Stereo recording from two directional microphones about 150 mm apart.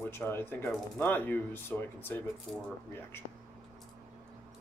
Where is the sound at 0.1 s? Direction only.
15° left (ahead or behind).